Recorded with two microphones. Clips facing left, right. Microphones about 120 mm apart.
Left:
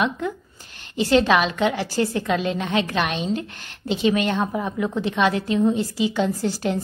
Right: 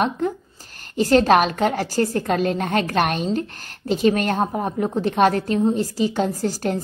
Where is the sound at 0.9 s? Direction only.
45° right (ahead or behind).